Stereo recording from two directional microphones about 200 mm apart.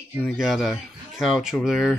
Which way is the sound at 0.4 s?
Centre (ahead or behind).